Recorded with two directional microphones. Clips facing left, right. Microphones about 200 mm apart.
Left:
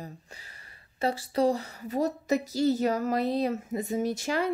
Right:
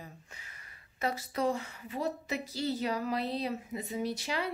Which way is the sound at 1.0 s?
30° left (ahead or behind).